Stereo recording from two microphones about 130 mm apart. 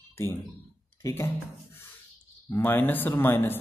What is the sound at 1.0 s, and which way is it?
Speech, 25° left (ahead or behind).